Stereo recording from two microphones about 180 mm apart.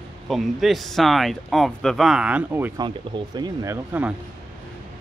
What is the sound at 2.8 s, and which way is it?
Speech, 25° right (ahead or behind).